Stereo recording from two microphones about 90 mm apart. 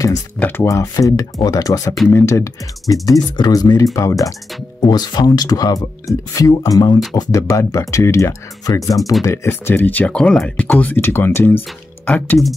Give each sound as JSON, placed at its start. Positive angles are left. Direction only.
{"t": 0.4, "sound": "speech", "side_deg": 25}
{"t": 0.7, "sound": "speech", "side_deg": 40}
{"t": 2.0, "sound": "speech", "side_deg": 30}
{"t": 3.3, "sound": "speech", "side_deg": 50}
{"t": 4.8, "sound": "speech", "side_deg": 50}
{"t": 7.2, "sound": "speech", "side_deg": 35}
{"t": 10.1, "sound": "speech", "side_deg": 5}